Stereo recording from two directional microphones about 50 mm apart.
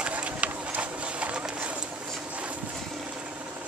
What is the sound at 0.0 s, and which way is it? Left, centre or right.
Run, right.